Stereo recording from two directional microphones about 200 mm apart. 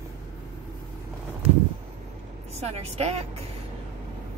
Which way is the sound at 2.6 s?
30° right (ahead or behind).